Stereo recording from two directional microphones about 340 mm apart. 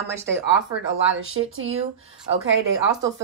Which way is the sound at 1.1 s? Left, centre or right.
Right.